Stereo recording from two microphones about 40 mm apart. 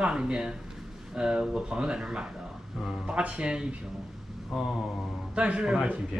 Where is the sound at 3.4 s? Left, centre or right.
Right.